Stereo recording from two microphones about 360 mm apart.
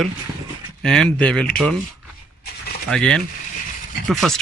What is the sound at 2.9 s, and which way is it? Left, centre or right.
A man's voice, centre.